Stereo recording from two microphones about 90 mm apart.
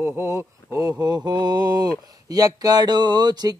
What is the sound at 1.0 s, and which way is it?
Speech, 50° right (ahead or behind).